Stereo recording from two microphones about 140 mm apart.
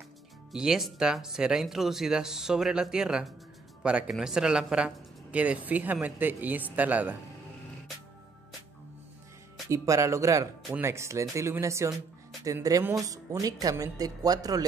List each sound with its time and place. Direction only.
0.5 s speech: 5° right (ahead or behind)
9.7 s speech: 20° right (ahead or behind)